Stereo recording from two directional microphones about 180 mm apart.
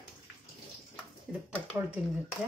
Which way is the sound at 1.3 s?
Centre (ahead or behind).